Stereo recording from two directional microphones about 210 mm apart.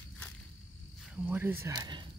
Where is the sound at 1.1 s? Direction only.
10° right (ahead or behind).